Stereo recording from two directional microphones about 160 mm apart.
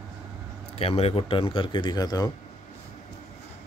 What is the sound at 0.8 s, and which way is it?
Speech, 40° left (ahead or behind).